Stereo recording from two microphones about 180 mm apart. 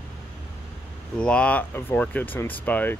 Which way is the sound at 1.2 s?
5° left (ahead or behind).